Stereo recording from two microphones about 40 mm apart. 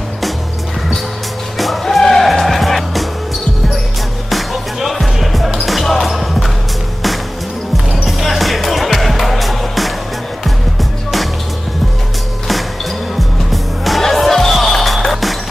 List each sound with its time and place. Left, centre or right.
1.6 s music: centre
4.3 s music: centre
8.2 s music: centre
13.5 s music: centre